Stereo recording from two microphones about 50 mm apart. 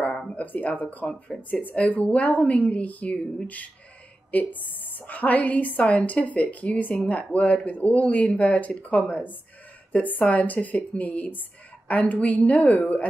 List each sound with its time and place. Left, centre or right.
0.4 s a woman's voice: left